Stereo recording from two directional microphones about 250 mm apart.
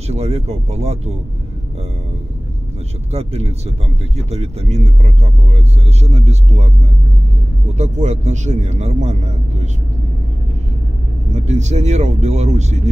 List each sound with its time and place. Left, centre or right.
0.1 s speech: right
3.1 s speech: right
7.7 s speech: right
11.3 s speech: right